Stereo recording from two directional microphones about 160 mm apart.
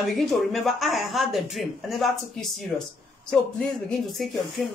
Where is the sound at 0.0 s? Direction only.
Centre (ahead or behind).